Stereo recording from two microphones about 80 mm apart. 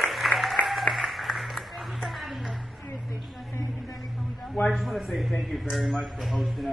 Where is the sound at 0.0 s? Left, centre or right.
Centre.